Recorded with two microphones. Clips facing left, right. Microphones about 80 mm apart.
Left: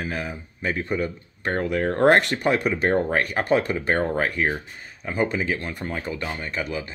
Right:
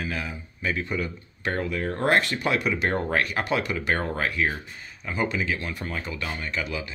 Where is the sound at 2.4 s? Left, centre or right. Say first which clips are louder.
Left 3 dB; left.